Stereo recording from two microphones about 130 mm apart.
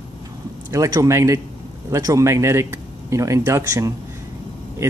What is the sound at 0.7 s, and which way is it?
Speech, 25° right (ahead or behind).